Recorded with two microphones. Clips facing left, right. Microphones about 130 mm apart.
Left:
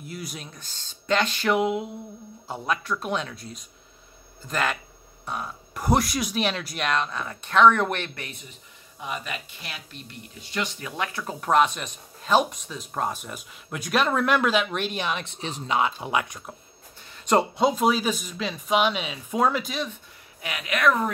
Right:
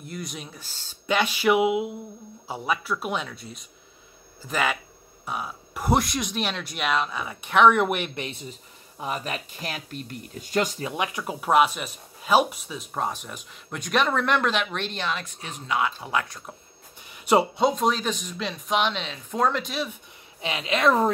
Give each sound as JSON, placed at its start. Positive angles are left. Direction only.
{"t": 0.0, "sound": "speech", "side_deg": 5}
{"t": 8.1, "sound": "a woman's voice", "side_deg": -25}
{"t": 10.8, "sound": "speech", "side_deg": -20}
{"t": 15.2, "sound": "speech", "side_deg": 25}
{"t": 17.1, "sound": "speech", "side_deg": -5}
{"t": 20.4, "sound": "a woman's voice", "side_deg": -25}